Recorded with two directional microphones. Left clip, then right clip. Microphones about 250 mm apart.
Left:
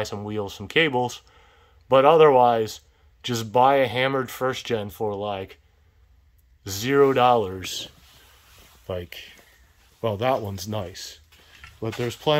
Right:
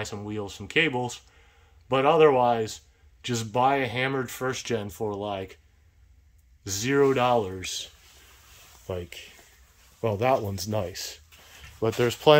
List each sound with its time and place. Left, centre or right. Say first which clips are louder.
0.0 s speech: left 5 dB; centre
6.6 s speech: left 4 dB; centre